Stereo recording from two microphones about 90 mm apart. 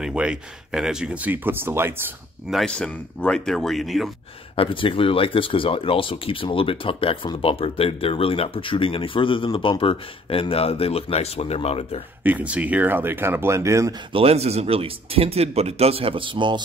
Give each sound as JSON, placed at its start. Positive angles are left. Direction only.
{"t": 0.0, "sound": "speech", "side_deg": -10}
{"t": 2.5, "sound": "a man's voice", "side_deg": 10}
{"t": 4.6, "sound": "speech", "side_deg": 75}
{"t": 12.2, "sound": "speech", "side_deg": -20}
{"t": 14.1, "sound": "speech", "side_deg": -90}